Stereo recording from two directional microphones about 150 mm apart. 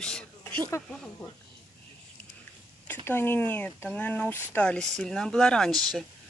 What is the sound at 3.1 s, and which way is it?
Speech, 15° left (ahead or behind).